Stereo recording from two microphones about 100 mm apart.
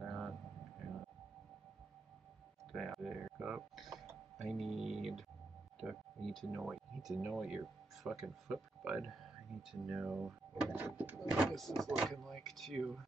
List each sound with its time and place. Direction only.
0.0 s a sound: centre (ahead or behind)
2.7 s speech: centre (ahead or behind)
3.9 s doorbell: 30° right (ahead or behind)
4.4 s speech: centre (ahead or behind)
10.7 s speech: 15° right (ahead or behind)
11.1 s speech: centre (ahead or behind)